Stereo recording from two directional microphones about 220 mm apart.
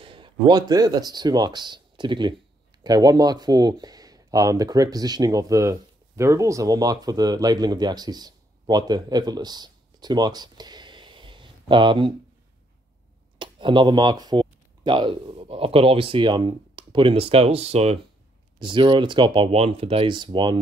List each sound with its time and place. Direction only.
0.0 s speech: 25° right (ahead or behind)
13.4 s speech: 20° right (ahead or behind)